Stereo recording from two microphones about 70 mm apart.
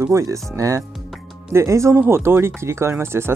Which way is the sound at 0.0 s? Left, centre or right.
Right.